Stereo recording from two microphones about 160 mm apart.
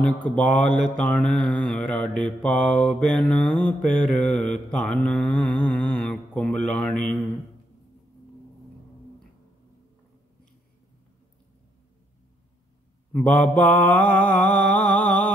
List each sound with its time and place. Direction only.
0.0 s mantra: 10° left (ahead or behind)
13.1 s mantra: 5° left (ahead or behind)
14.9 s a sound: 55° left (ahead or behind)